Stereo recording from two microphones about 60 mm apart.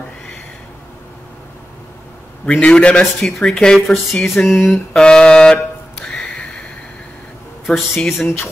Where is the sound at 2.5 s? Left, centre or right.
Centre.